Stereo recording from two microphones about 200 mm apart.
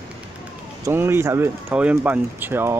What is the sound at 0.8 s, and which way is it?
Speech, 10° right (ahead or behind).